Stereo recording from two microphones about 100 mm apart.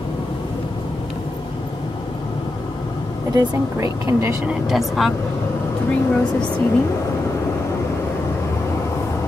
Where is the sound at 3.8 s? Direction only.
30° right (ahead or behind).